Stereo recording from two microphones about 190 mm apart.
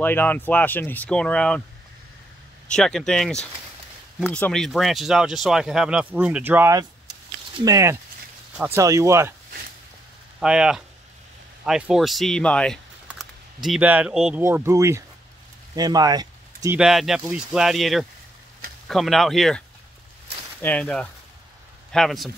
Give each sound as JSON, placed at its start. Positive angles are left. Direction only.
{"t": 0.0, "sound": "speech", "side_deg": 10}
{"t": 2.7, "sound": "speech", "side_deg": 0}
{"t": 10.4, "sound": "speech", "side_deg": -5}
{"t": 14.4, "sound": "speech", "side_deg": -15}
{"t": 16.7, "sound": "speech", "side_deg": 0}
{"t": 20.6, "sound": "speech", "side_deg": 5}